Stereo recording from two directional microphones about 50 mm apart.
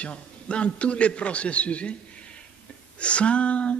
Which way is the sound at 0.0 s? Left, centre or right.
Left.